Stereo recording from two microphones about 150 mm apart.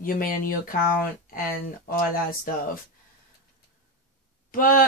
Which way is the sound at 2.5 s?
70° left (ahead or behind).